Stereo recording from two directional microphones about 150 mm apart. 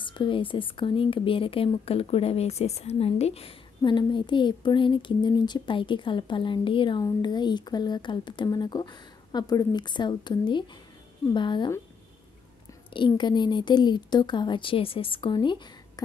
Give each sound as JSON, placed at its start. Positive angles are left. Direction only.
{"t": 0.0, "sound": "speech", "side_deg": 35}
{"t": 12.9, "sound": "speech", "side_deg": 30}